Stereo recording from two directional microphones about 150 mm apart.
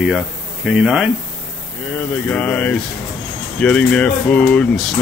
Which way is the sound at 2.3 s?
10° left (ahead or behind).